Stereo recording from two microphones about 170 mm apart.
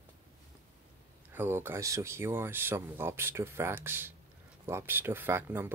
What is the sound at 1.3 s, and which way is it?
Speech, 10° right (ahead or behind).